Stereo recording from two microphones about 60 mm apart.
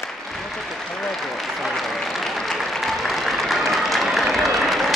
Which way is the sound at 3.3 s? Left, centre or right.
Centre.